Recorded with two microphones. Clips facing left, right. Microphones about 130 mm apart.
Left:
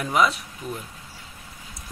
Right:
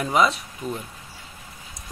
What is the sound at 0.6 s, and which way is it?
Speech, 30° right (ahead or behind).